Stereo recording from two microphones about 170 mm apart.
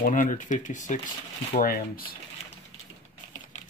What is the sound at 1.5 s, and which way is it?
Speech, 60° left (ahead or behind).